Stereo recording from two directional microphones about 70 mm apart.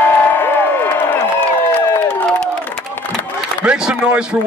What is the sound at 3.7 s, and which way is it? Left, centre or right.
Speech, centre.